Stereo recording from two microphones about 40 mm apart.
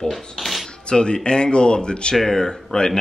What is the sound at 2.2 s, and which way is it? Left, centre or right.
Speech, centre.